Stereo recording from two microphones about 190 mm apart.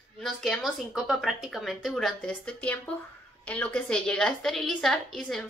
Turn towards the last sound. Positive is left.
turn(degrees=0)  # may be behind; listen again after turning